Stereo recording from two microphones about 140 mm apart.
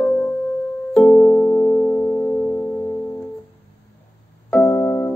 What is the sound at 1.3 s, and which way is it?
Music, 20° left (ahead or behind).